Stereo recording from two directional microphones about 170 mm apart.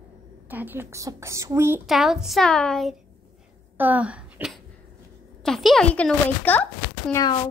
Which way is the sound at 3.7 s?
10° right (ahead or behind).